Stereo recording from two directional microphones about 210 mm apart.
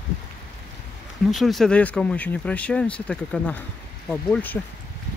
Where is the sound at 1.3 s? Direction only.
Centre (ahead or behind).